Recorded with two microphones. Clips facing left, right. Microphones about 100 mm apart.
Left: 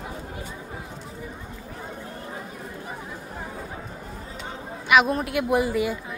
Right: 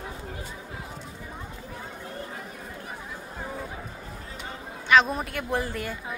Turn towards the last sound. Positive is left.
turn(degrees=10)  # may be behind; listen again after turning